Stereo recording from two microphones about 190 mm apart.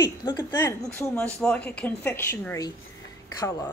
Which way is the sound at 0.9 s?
10° left (ahead or behind).